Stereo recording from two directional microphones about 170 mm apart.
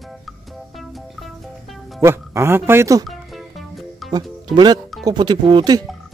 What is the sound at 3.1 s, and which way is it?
Music, centre (ahead or behind).